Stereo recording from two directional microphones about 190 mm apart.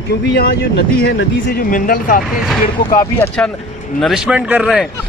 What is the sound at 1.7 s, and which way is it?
Speech, 45° left (ahead or behind).